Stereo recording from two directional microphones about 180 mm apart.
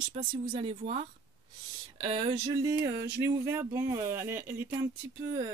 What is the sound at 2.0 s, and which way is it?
Speech, 30° right (ahead or behind).